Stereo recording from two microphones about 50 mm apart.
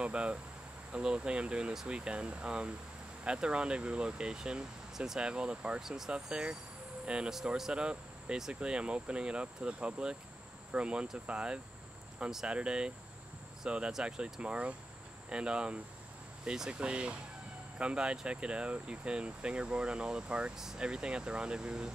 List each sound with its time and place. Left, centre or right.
0.0 s speech: right
5.3 s speech: right
5.8 s speech: centre
6.1 s speech: centre